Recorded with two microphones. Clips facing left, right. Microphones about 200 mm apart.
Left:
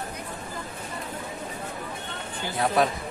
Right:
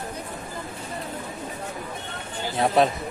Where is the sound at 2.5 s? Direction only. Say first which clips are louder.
Right 3 dB; 25° right (ahead or behind).